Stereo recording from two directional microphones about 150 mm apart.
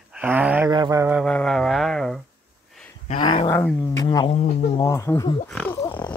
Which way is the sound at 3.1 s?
40° left (ahead or behind).